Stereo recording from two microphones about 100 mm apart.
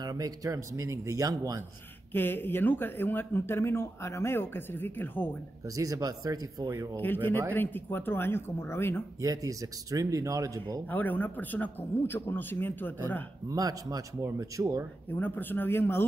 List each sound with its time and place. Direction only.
0.0 s speech: 40° right (ahead or behind)
2.1 s speech: 20° left (ahead or behind)
5.8 s speech: 35° right (ahead or behind)
7.5 s speech: 20° left (ahead or behind)
9.2 s speech: 35° right (ahead or behind)
10.9 s speech: 20° left (ahead or behind)
13.5 s speech: 35° right (ahead or behind)
15.0 s speech: 20° left (ahead or behind)